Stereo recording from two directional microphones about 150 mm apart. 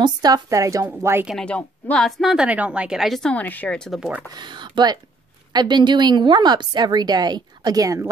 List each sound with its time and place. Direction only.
0.0 s a woman's voice: 25° right (ahead or behind)
1.3 s a woman's voice: 10° left (ahead or behind)
4.4 s a woman's voice: 30° right (ahead or behind)